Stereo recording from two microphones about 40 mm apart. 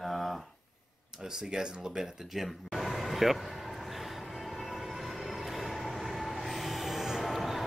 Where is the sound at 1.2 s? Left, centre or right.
Centre.